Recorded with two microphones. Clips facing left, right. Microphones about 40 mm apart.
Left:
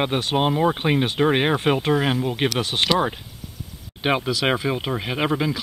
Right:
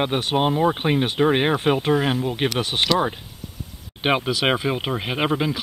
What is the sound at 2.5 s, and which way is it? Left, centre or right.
Speech, centre.